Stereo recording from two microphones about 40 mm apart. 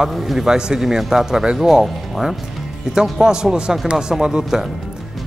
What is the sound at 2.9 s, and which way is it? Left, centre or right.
A man's voice, centre.